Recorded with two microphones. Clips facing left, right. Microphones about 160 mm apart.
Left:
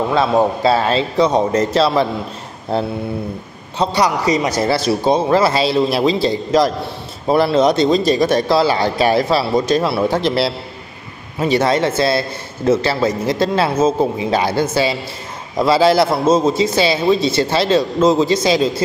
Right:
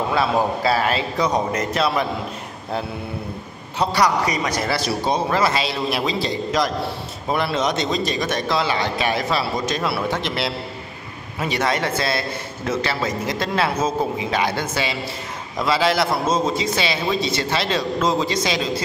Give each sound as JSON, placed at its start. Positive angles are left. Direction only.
{"t": 0.1, "sound": "a man's voice", "side_deg": 25}
{"t": 3.7, "sound": "a man's voice", "side_deg": 25}